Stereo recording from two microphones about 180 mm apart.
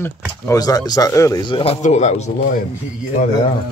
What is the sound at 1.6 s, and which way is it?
Speech, 35° left (ahead or behind).